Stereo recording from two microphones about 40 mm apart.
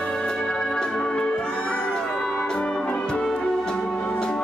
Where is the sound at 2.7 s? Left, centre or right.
Left.